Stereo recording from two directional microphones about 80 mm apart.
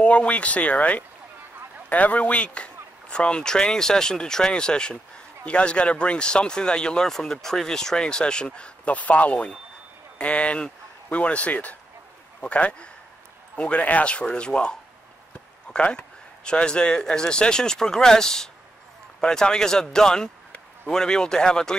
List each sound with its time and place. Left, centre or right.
0.0 s a man's voice: centre